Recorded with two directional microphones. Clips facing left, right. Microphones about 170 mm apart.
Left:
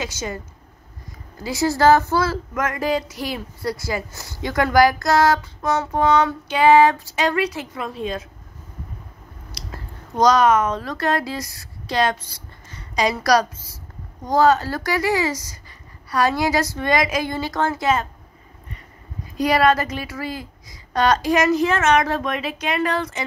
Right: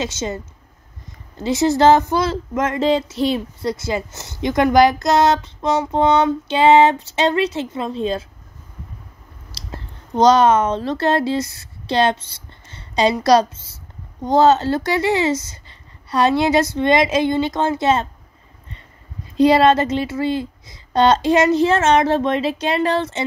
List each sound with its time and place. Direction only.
0.0 s speech: 25° right (ahead or behind)
9.5 s speech: 30° right (ahead or behind)
19.3 s speech: 25° right (ahead or behind)